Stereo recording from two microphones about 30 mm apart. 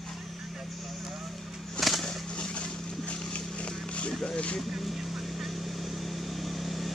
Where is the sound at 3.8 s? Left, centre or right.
Left.